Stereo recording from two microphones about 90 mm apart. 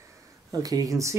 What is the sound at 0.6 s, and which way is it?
Speech, 40° right (ahead or behind).